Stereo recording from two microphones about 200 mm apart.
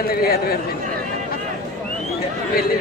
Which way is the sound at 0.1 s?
50° left (ahead or behind).